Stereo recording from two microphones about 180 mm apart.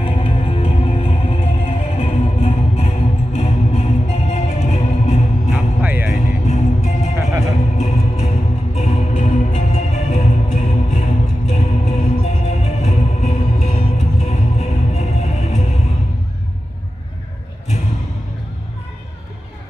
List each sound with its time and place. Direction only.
0.0 s music: 30° left (ahead or behind)
5.5 s music: 10° right (ahead or behind)
6.1 s music: 40° left (ahead or behind)